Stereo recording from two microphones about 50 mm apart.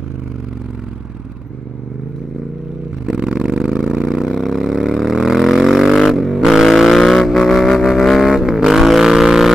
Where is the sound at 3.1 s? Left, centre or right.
Centre.